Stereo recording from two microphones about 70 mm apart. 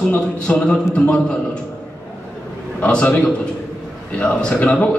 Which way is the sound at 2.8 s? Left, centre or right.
Centre.